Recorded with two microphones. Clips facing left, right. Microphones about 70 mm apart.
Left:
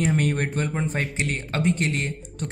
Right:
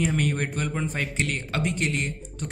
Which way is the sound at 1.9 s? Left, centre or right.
Left.